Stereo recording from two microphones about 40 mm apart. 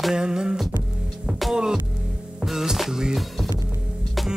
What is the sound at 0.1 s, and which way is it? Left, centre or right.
Music, centre.